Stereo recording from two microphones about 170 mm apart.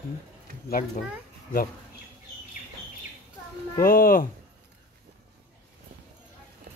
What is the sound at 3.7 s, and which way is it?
Speech, 55° left (ahead or behind).